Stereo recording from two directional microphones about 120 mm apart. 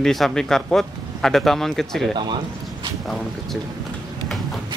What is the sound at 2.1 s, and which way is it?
Speech, 40° right (ahead or behind).